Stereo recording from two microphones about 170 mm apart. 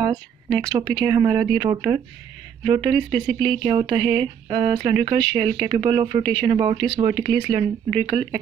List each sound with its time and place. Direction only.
0.0 s speech: 25° right (ahead or behind)